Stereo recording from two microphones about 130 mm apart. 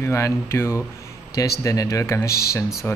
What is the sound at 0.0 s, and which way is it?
Speech, 20° left (ahead or behind).